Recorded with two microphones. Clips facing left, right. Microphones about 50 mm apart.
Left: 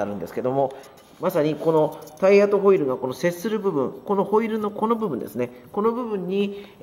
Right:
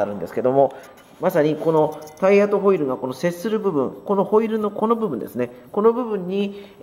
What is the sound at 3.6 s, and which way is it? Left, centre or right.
Speech, right.